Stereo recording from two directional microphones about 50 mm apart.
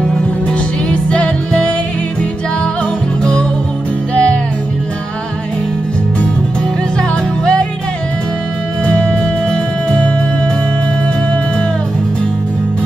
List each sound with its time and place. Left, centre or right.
0.0 s music: left
4.1 s music: left
7.0 s music: centre
8.8 s music: left